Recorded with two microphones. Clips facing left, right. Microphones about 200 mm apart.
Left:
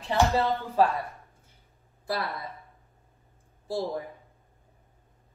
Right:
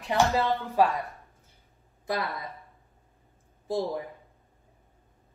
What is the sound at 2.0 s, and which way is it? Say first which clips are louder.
Speech: right 1 dB; 15° right (ahead or behind).